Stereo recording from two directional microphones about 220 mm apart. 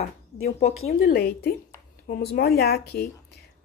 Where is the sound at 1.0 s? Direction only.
45° left (ahead or behind).